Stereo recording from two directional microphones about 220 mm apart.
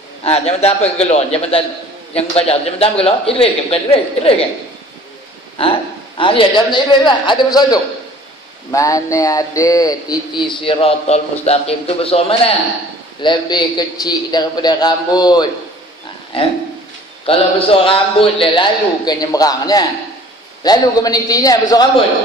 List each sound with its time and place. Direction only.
0.2 s a man's voice: 30° left (ahead or behind)
6.1 s a man's voice: 25° left (ahead or behind)
17.3 s a man's voice: 25° left (ahead or behind)